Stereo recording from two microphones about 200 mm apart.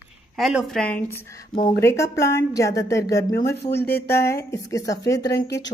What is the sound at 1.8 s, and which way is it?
A woman's voice, 15° left (ahead or behind).